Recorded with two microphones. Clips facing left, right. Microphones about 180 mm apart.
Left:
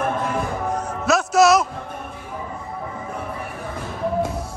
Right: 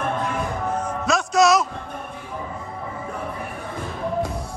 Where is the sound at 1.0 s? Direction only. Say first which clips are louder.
Left 3 dB; 5° left (ahead or behind).